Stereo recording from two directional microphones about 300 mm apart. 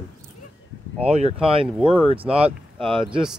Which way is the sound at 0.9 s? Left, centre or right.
Right.